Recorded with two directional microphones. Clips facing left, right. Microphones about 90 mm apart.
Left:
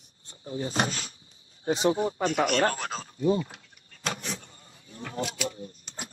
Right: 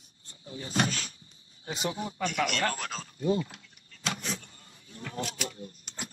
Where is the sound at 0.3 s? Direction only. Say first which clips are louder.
Left 4 dB; 35° left (ahead or behind).